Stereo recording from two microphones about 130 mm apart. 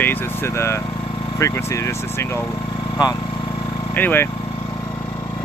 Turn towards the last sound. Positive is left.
turn(degrees=15)  # may be behind; listen again after turning